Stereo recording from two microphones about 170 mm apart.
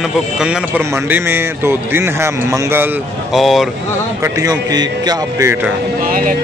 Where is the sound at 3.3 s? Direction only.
Centre (ahead or behind).